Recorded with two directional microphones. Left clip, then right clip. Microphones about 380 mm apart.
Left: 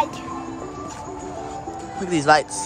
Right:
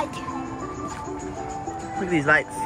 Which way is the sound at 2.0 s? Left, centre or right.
Centre.